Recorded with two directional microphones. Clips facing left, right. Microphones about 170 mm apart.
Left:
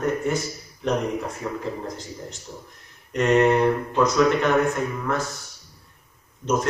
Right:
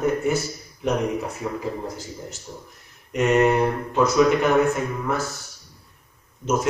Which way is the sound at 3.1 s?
5° right (ahead or behind).